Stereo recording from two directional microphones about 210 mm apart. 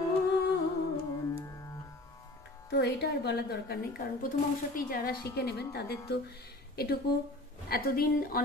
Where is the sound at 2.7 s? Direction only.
50° left (ahead or behind).